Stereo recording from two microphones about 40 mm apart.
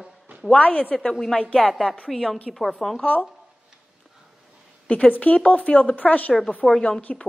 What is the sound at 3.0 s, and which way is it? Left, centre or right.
Speech, left.